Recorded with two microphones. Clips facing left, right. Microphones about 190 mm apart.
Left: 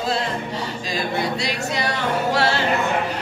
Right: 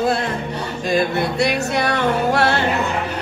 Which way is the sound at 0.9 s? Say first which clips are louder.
Right 6 dB; 55° right (ahead or behind).